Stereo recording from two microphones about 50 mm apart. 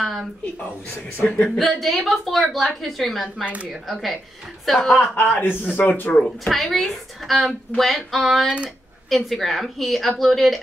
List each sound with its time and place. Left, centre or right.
1.1 s speech: left
1.6 s a woman's voice: centre
4.9 s a man's voice: left
6.4 s a woman's voice: centre